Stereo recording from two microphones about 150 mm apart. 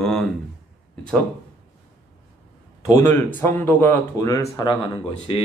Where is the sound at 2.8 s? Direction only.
15° left (ahead or behind); by 5.4 s 30° left (ahead or behind).